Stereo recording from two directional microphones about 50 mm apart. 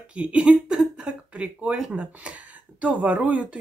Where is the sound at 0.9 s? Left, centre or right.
Right.